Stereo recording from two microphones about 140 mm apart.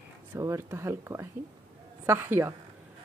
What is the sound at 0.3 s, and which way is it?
Speech, 20° right (ahead or behind).